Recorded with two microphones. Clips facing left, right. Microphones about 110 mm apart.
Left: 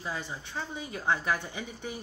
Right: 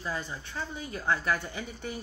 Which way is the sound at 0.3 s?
20° left (ahead or behind).